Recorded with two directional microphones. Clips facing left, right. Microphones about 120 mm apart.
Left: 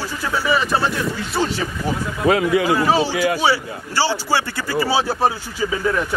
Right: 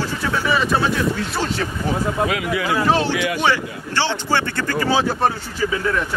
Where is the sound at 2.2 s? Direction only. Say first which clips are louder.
Left 5 dB; 35° left (ahead or behind).